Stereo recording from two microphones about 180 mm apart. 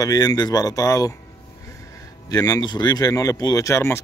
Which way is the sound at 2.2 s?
20° left (ahead or behind).